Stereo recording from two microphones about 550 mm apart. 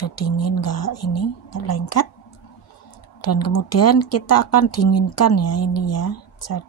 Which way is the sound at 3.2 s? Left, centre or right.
Left.